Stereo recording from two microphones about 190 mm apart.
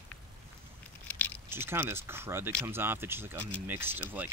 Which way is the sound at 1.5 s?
10° right (ahead or behind).